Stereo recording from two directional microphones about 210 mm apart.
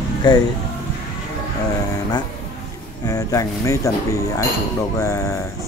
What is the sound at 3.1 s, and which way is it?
Speech, 15° left (ahead or behind).